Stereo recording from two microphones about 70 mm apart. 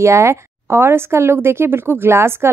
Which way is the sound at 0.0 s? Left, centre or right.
Right.